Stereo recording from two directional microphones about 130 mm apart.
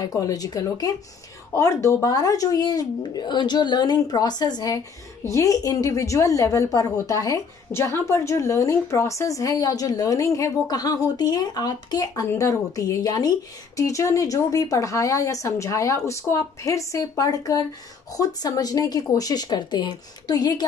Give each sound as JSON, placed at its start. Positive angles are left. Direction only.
{"t": 0.0, "sound": "speech", "side_deg": 30}